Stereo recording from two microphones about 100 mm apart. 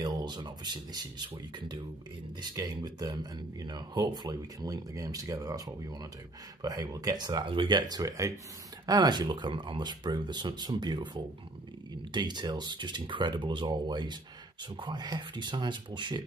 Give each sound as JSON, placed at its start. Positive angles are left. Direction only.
{"t": 0.0, "sound": "speech", "side_deg": -45}
{"t": 2.5, "sound": "speech", "side_deg": -35}